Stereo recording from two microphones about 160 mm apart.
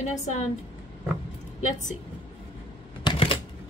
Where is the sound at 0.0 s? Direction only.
45° left (ahead or behind).